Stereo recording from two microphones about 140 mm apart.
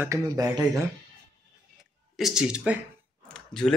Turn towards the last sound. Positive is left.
turn(degrees=5)  # may be behind; listen again after turning